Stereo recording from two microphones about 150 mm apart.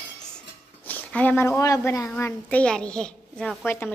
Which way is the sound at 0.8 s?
10° left (ahead or behind).